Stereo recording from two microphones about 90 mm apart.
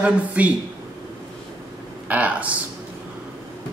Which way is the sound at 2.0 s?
15° right (ahead or behind).